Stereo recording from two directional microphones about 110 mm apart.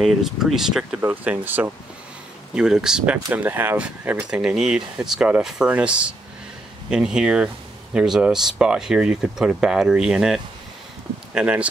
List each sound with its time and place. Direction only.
0.0 s speech: centre (ahead or behind)
1.0 s speech: 15° right (ahead or behind)
2.5 s speech: 5° right (ahead or behind)